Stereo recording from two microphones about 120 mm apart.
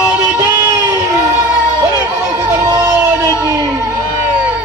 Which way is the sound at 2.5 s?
25° right (ahead or behind).